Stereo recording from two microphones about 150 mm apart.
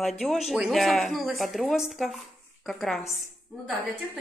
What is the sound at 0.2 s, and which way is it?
Speech, centre (ahead or behind).